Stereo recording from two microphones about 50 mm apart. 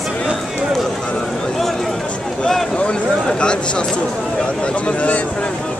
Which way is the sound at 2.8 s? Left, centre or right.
Centre.